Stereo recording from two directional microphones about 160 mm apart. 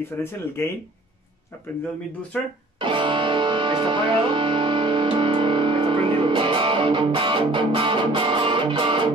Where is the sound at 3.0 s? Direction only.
30° right (ahead or behind).